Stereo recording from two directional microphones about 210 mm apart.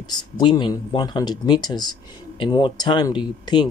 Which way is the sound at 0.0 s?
20° left (ahead or behind).